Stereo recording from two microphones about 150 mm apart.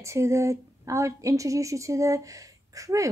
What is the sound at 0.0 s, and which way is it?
Speech, 20° right (ahead or behind).